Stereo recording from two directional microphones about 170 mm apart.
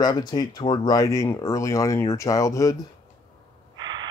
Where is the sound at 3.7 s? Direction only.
25° right (ahead or behind).